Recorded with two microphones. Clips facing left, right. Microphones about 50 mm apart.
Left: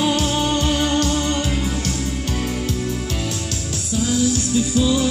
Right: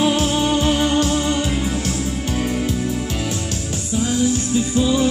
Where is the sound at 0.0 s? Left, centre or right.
Centre.